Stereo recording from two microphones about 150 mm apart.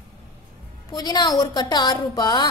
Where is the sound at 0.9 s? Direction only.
30° left (ahead or behind).